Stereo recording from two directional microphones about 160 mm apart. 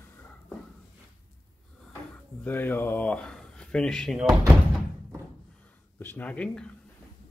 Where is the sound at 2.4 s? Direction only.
10° left (ahead or behind).